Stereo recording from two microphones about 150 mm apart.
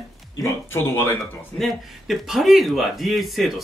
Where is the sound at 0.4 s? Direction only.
15° left (ahead or behind).